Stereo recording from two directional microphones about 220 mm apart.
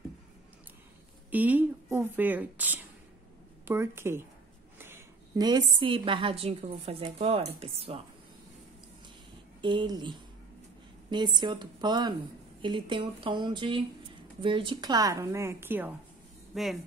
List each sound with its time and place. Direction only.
1.3 s a woman's voice: 5° right (ahead or behind); by 8.0 s 25° right (ahead or behind)
9.6 s a woman's voice: 20° right (ahead or behind); by 16.7 s centre (ahead or behind)